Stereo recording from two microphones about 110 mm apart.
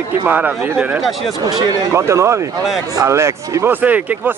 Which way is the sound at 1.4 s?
35° right (ahead or behind).